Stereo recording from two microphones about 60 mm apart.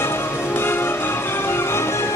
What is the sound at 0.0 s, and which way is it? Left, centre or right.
Music, left.